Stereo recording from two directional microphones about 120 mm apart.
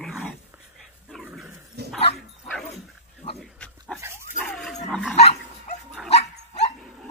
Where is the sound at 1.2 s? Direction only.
10° right (ahead or behind).